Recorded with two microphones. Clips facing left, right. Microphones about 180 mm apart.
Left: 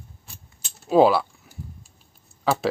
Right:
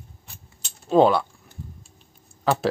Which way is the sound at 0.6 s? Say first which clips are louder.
Left 1 dB; 5° left (ahead or behind).